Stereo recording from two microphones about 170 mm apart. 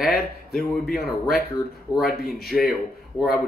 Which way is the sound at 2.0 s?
65° left (ahead or behind).